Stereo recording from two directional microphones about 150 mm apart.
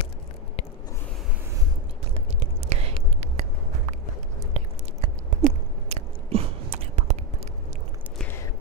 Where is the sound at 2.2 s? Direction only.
45° right (ahead or behind).